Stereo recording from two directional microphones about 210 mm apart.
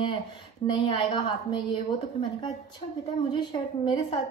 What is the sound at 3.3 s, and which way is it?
Speech, 20° left (ahead or behind).